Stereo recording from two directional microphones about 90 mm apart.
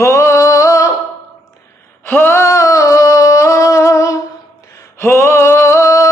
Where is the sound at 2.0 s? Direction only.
25° left (ahead or behind).